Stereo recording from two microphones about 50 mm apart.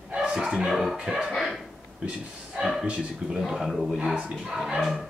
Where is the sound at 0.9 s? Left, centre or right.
Centre.